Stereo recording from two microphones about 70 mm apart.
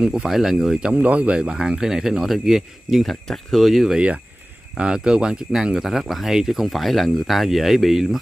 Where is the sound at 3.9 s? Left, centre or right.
Centre.